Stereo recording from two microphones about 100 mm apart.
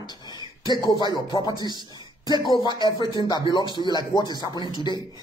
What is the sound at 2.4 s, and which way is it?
Speech, 50° left (ahead or behind).